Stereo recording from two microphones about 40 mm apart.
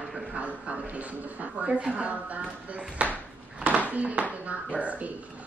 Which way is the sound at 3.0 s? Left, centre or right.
Right.